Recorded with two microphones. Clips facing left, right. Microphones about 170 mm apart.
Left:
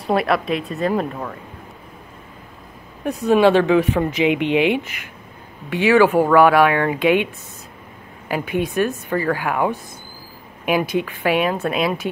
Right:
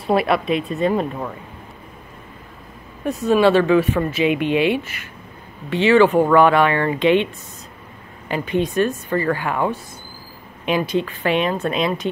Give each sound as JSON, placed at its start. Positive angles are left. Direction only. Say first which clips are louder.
{"t": 0.0, "sound": "speech", "louder": "right 1 dB", "side_deg": 0}
{"t": 3.1, "sound": "speech", "louder": "left 1 dB", "side_deg": 15}
{"t": 8.3, "sound": "speech", "louder": "right 1 dB", "side_deg": 10}